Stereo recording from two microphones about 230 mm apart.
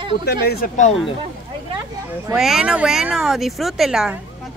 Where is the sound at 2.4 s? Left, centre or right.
Centre.